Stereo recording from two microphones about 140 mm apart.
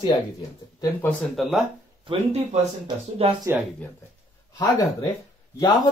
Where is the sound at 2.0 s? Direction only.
35° right (ahead or behind).